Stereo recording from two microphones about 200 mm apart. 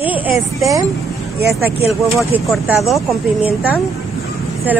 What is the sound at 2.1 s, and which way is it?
Speech, 10° right (ahead or behind).